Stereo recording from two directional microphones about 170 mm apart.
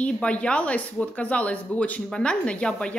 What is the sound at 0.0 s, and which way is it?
Speech, 5° left (ahead or behind).